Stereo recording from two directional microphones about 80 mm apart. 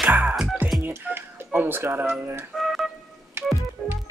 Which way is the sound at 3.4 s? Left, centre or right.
Right.